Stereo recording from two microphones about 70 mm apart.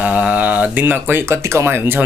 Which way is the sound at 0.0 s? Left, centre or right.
Centre.